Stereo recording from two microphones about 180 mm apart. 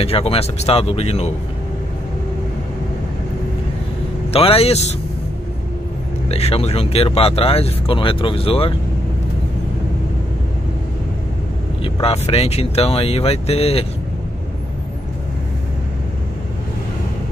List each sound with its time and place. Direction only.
0.0 s speech: 35° left (ahead or behind)
4.3 s speech: 30° left (ahead or behind)
6.2 s speech: 35° left (ahead or behind)
11.8 s speech: 30° left (ahead or behind)